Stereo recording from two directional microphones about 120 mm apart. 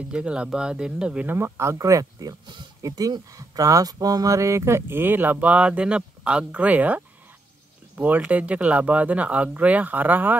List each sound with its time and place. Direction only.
0.1 s speech: 10° right (ahead or behind)
8.0 s speech: 10° right (ahead or behind)